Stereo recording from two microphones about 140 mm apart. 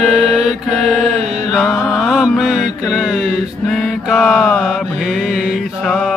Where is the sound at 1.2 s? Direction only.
55° right (ahead or behind).